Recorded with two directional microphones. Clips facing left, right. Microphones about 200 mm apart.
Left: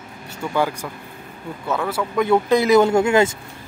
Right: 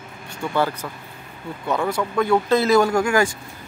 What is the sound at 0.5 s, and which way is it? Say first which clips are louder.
Speech: left 1 dB; 15° left (ahead or behind).